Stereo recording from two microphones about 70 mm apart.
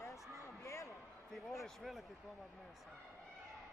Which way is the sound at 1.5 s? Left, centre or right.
Centre.